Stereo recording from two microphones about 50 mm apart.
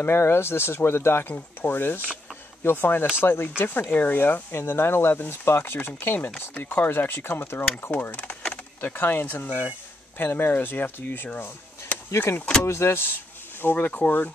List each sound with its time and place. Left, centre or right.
0.0 s speech: left
7.9 s speech: left
11.3 s a sound: left
12.6 s speech: left